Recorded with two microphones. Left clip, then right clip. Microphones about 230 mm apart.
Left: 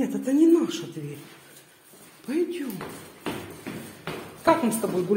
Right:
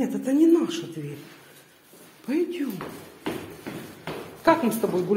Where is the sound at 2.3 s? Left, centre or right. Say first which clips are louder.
Right 1 dB; centre.